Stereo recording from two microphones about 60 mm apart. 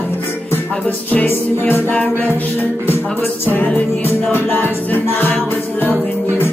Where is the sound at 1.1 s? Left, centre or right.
Left.